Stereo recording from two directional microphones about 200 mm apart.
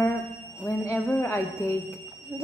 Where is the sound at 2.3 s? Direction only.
15° right (ahead or behind).